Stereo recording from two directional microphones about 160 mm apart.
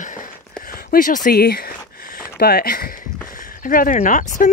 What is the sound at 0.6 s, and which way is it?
Speech, 65° left (ahead or behind).